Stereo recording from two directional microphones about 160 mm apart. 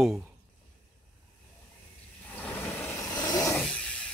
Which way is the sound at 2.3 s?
10° left (ahead or behind).